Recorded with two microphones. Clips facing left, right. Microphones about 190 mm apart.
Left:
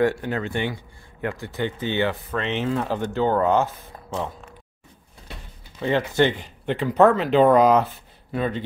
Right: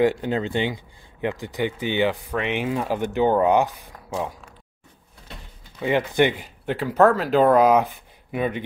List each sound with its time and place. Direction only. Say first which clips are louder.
0.0 s speech: right 2 dB; 15° right (ahead or behind)
5.8 s speech: even; 15° right (ahead or behind)